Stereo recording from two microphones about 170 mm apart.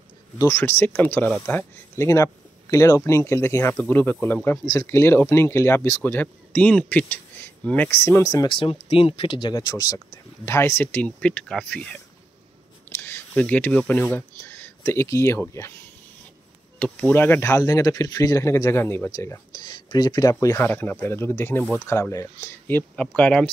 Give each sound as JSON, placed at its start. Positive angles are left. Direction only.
{"t": 0.4, "sound": "speech", "side_deg": 15}
{"t": 13.0, "sound": "speech", "side_deg": 10}
{"t": 16.8, "sound": "speech", "side_deg": 10}